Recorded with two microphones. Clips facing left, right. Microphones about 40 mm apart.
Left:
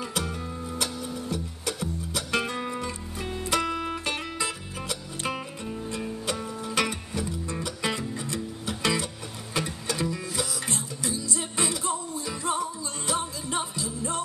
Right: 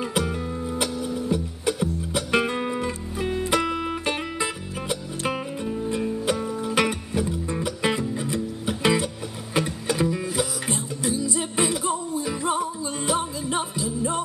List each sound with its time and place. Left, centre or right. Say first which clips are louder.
0.3 s music: right 6 dB; centre
8.0 s music: right 6 dB; centre
8.3 s music: right 5 dB; centre